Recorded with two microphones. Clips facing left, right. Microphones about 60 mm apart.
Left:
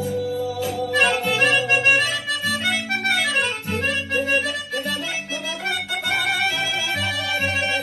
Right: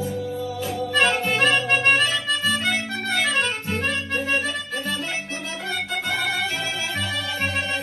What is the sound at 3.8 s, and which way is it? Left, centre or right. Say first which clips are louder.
Harmonica: left 4 dB; centre.